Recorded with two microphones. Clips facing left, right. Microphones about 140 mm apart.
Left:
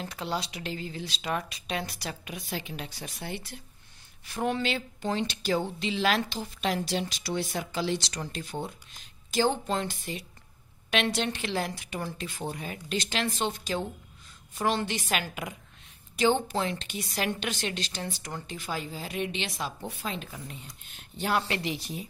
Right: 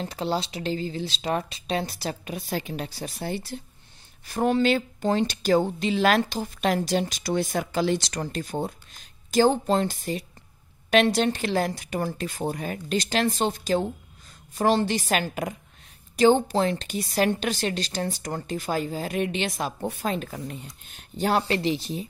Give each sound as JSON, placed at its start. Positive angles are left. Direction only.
{"t": 0.0, "sound": "a woman's voice", "side_deg": -30}
{"t": 21.2, "sound": "speech", "side_deg": -35}